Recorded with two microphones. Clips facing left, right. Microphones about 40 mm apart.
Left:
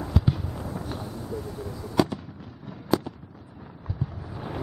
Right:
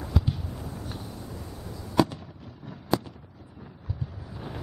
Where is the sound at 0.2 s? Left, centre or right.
Centre.